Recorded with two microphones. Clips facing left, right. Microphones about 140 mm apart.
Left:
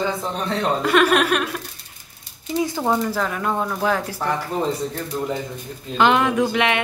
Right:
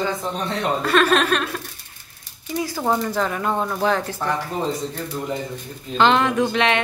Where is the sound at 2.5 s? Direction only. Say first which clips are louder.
Left 3 dB; 20° left (ahead or behind).